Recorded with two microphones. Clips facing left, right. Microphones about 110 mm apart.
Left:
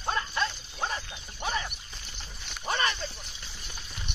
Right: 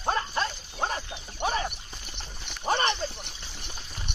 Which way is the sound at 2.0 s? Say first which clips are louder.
Right 3 dB; 50° right (ahead or behind).